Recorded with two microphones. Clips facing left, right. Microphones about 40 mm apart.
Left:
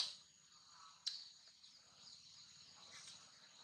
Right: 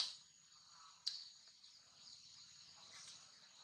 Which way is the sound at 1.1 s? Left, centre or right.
Left.